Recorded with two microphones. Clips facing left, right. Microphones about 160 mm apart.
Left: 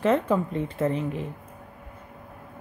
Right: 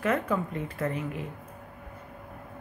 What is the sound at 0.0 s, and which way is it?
A woman's voice, 25° left (ahead or behind).